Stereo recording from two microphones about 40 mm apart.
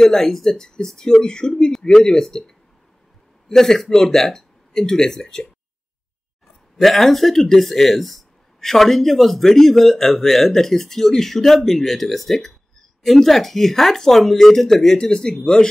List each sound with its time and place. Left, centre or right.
0.0 s speech: centre
2.0 s speech: centre
6.8 s speech: centre
15.0 s speech: centre